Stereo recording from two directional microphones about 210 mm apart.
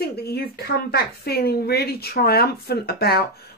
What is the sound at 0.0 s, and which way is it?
Speech, 50° left (ahead or behind).